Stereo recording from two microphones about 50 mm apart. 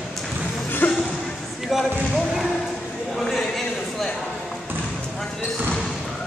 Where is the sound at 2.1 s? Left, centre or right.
Centre.